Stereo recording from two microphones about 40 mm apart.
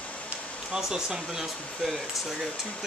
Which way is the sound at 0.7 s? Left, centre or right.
Centre.